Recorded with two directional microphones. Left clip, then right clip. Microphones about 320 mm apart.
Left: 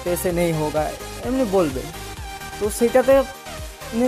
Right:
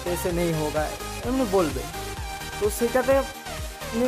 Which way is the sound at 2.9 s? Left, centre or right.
Centre.